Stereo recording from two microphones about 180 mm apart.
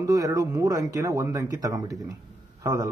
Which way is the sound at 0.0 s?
20° right (ahead or behind).